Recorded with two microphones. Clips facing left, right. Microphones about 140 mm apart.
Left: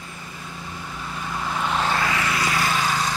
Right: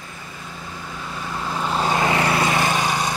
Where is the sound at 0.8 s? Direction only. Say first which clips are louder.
Right 1 dB; centre (ahead or behind).